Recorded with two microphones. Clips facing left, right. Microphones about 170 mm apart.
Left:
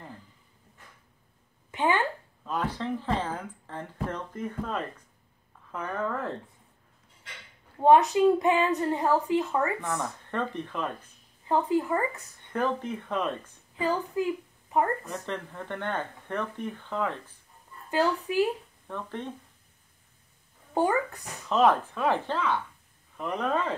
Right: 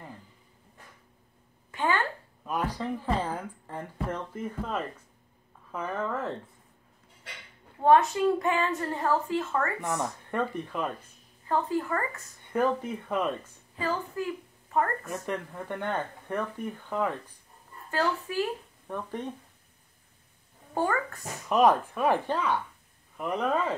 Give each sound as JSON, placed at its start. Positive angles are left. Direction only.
{"t": 1.7, "sound": "a sound", "side_deg": 20}
{"t": 2.4, "sound": "a woman's voice", "side_deg": -10}
{"t": 7.8, "sound": "a woman's voice", "side_deg": 20}
{"t": 9.8, "sound": "speech", "side_deg": -15}
{"t": 11.4, "sound": "a woman's voice", "side_deg": 20}
{"t": 12.5, "sound": "speech", "side_deg": -10}
{"t": 13.7, "sound": "a woman's voice", "side_deg": 20}
{"t": 15.2, "sound": "speech", "side_deg": -10}
{"t": 17.9, "sound": "a woman's voice", "side_deg": 20}
{"t": 18.9, "sound": "speech", "side_deg": -15}
{"t": 20.7, "sound": "a woman's voice", "side_deg": 15}
{"t": 21.5, "sound": "speech", "side_deg": -15}